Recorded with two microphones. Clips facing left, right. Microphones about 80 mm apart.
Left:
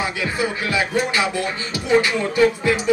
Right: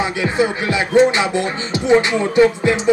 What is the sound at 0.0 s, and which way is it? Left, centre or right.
Music, right.